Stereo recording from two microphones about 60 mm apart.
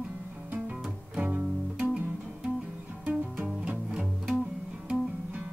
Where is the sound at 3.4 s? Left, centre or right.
Right.